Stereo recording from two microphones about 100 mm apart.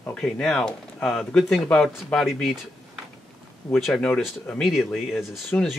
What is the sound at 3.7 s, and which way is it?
Speech, 5° left (ahead or behind).